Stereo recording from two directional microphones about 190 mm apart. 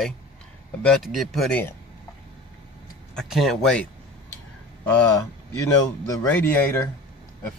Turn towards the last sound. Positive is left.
turn(degrees=10)  # may be behind; listen again after turning